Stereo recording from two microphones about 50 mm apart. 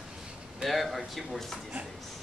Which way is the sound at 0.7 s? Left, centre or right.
Centre.